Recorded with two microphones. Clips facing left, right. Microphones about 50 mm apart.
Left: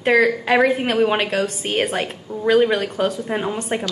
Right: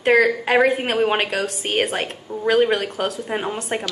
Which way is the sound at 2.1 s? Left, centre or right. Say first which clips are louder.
Left 2 dB; centre.